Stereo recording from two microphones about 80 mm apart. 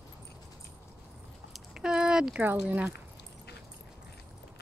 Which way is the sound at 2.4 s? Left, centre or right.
Right.